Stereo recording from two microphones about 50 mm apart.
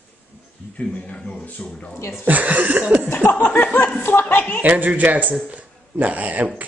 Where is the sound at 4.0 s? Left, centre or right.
Left.